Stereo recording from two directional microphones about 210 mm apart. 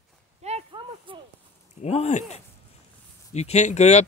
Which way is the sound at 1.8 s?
30° left (ahead or behind).